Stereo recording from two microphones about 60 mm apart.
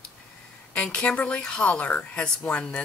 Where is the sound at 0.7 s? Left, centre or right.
Centre.